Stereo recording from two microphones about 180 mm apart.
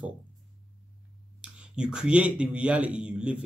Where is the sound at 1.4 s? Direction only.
5° right (ahead or behind).